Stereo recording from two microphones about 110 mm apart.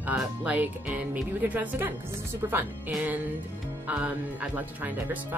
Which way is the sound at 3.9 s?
15° right (ahead or behind).